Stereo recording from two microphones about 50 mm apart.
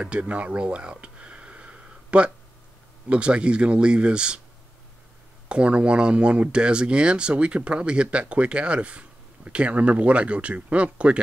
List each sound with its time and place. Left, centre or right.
0.0 s a sound: right
3.1 s speech: right
5.5 s speech: right